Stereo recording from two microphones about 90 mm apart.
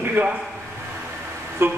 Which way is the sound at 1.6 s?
25° right (ahead or behind).